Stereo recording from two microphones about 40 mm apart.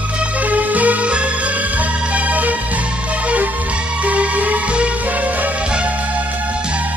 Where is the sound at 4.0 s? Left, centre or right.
Right.